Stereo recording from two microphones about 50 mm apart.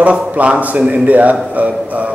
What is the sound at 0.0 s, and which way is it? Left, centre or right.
A man's voice, right.